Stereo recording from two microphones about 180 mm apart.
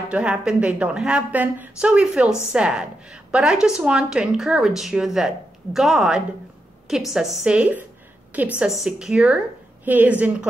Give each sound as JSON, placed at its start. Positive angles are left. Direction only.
{"t": 0.1, "sound": "a woman's voice", "side_deg": -5}